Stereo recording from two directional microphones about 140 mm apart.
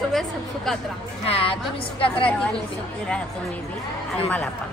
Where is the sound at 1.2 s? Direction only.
40° left (ahead or behind).